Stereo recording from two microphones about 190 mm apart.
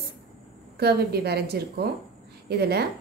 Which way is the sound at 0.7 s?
55° right (ahead or behind).